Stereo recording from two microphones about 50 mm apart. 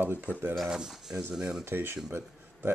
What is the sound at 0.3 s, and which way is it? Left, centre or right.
Speech, left.